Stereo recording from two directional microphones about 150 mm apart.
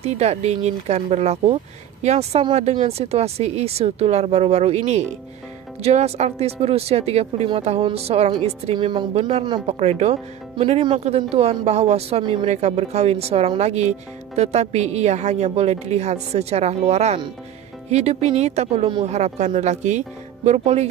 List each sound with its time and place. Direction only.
0.0 s a woman's voice: 45° right (ahead or behind); by 9.8 s 30° right (ahead or behind)
9.8 s a woman's voice: 45° right (ahead or behind)
12.4 s speech: 45° right (ahead or behind)